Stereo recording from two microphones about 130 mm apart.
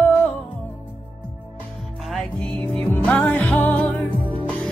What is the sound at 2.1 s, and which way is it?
Music, 5° left (ahead or behind).